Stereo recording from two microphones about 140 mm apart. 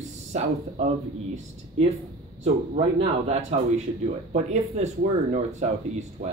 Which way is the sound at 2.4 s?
50° right (ahead or behind).